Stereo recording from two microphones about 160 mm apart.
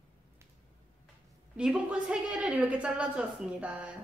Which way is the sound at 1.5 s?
5° right (ahead or behind).